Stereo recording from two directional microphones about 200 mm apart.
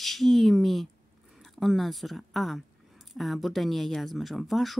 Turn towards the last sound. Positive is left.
turn(degrees=0)  # may be behind; listen again after turning